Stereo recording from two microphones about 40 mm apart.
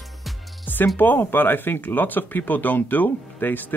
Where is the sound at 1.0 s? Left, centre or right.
Left.